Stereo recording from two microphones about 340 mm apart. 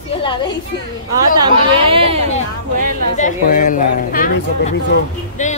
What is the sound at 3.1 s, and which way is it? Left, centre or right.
Speech, left.